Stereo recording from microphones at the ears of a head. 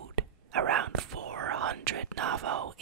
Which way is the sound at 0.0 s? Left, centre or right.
Right.